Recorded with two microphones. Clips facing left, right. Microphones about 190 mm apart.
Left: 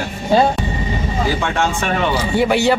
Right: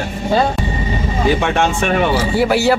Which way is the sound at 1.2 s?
20° right (ahead or behind).